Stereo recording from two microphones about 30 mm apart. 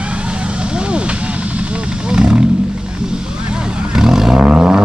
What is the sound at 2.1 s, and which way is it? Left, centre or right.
Roaring cats, right.